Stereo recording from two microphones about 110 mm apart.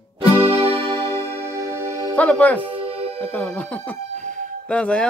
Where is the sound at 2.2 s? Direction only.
15° left (ahead or behind).